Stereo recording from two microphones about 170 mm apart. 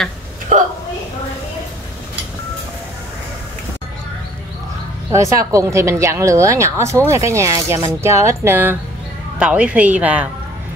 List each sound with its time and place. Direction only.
5.1 s speech: 20° right (ahead or behind)